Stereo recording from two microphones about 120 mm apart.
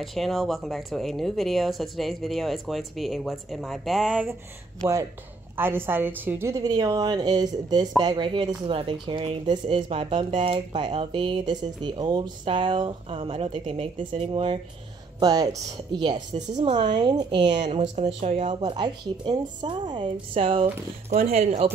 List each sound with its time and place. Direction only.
0.0 s speech: centre (ahead or behind)
5.6 s a woman's voice: 20° right (ahead or behind); by 14.6 s 50° right (ahead or behind)
15.1 s speech: 30° right (ahead or behind)
16.3 s speech: 75° right (ahead or behind)
16.8 s speech: 40° right (ahead or behind)
17.5 s speech: 75° right (ahead or behind)
18.6 s a woman's voice: 40° right (ahead or behind)
21.1 s speech: 65° right (ahead or behind)